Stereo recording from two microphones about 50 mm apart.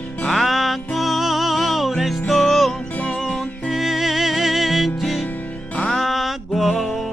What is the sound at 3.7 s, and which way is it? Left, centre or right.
Music, centre.